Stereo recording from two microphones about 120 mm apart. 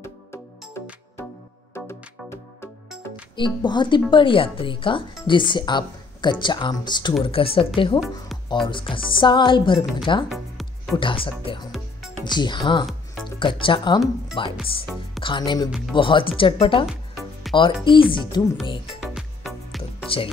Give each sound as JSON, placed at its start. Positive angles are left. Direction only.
{"t": 0.0, "sound": "music", "side_deg": 20}
{"t": 3.3, "sound": "speech", "side_deg": 40}
{"t": 7.2, "sound": "speech", "side_deg": 50}
{"t": 10.3, "sound": "music", "side_deg": 0}
{"t": 11.0, "sound": "speech", "side_deg": 45}
{"t": 16.8, "sound": "music", "side_deg": 0}
{"t": 17.8, "sound": "speech", "side_deg": 45}
{"t": 18.9, "sound": "music", "side_deg": 0}